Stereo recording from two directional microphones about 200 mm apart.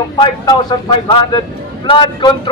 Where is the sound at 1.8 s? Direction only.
25° left (ahead or behind).